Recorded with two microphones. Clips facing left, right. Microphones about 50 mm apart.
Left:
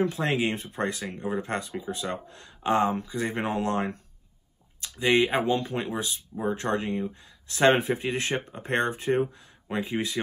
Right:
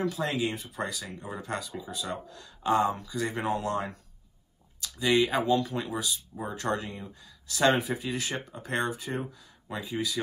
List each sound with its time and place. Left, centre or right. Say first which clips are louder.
0.0 s speech: left 3 dB; left